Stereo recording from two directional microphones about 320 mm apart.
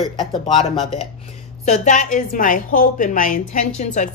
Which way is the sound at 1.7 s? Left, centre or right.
Left.